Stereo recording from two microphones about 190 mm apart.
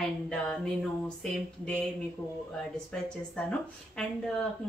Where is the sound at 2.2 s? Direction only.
15° left (ahead or behind).